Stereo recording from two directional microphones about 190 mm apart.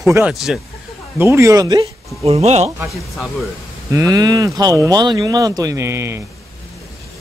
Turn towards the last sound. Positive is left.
turn(degrees=-15)  # may be behind; listen again after turning